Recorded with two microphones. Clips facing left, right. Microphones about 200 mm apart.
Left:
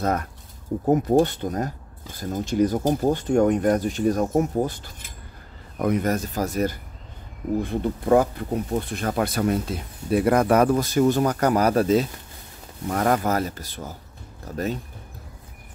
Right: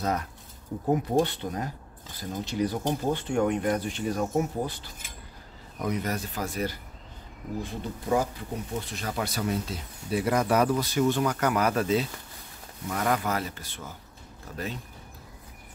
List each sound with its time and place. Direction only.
0.0 s speech: 50° left (ahead or behind)
7.6 s speech: 55° left (ahead or behind); by 14.8 s 40° left (ahead or behind)